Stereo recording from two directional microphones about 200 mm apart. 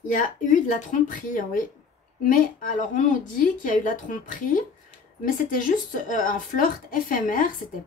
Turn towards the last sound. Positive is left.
turn(degrees=45)  # may be behind; listen again after turning